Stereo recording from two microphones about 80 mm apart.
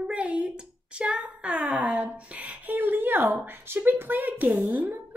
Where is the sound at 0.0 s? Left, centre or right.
Centre.